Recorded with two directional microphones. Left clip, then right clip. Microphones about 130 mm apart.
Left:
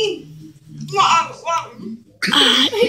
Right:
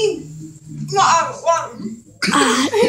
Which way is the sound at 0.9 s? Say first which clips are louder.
Right 1 dB; 15° right (ahead or behind).